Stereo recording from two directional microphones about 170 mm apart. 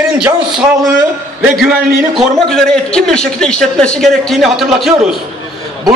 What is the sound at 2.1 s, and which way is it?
A man's voice, 5° left (ahead or behind).